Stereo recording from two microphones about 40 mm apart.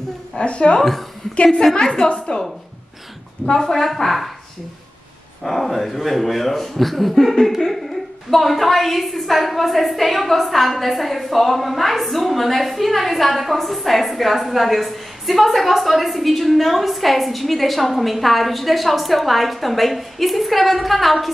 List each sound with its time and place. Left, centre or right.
0.4 s a woman's voice: left
1.6 s a woman's voice: centre
2.0 s a woman's voice: left
3.4 s speech: centre
5.4 s speech: centre